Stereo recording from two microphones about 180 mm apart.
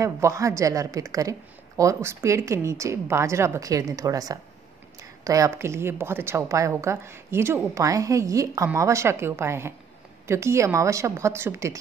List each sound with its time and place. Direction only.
0.0 s a woman's voice: 15° right (ahead or behind)